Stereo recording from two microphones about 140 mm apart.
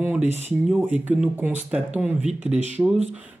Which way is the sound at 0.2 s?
55° right (ahead or behind).